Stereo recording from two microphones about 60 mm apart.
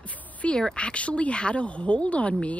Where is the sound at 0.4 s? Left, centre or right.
Centre.